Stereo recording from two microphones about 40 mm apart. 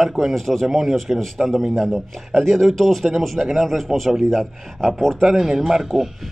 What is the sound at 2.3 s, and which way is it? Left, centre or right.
A man's voice, centre.